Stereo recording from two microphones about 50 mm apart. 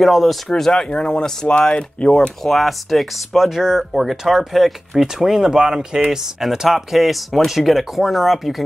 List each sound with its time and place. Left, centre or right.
0.0 s speech: centre
0.5 s speech: centre
2.4 s speech: centre